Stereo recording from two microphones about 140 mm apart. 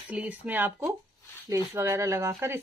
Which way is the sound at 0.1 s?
10° right (ahead or behind).